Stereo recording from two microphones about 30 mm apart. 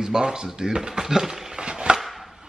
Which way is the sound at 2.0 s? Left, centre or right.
Centre.